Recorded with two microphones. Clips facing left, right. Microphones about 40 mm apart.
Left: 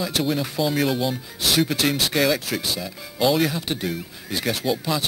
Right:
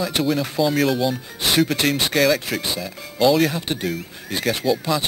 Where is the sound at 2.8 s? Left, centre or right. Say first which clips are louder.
Right 3 dB; centre.